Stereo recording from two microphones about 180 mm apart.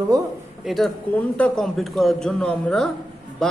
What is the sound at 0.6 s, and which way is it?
A man's voice, centre (ahead or behind).